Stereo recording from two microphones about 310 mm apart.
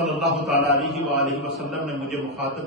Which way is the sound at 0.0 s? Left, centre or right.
Centre.